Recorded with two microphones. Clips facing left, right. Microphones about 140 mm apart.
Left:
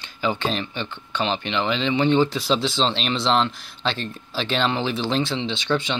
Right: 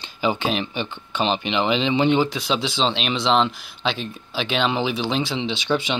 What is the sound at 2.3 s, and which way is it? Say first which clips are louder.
Speech: left 2 dB; centre (ahead or behind).